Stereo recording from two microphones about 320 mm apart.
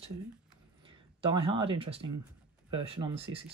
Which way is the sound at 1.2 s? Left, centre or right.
Centre.